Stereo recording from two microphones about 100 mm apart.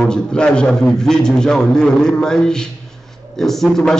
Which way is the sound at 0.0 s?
10° left (ahead or behind).